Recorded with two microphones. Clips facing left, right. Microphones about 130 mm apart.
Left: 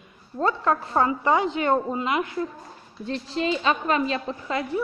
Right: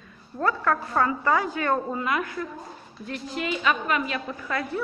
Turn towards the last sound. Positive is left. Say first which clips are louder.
# left 2 dB
turn(degrees=20)  # may be behind; listen again after turning